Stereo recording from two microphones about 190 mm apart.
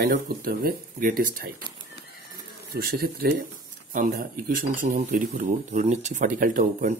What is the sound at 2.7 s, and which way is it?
Speech, 55° right (ahead or behind).